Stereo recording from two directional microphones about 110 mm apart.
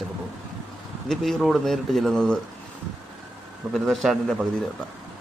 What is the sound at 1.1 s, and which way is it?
Speech, centre (ahead or behind).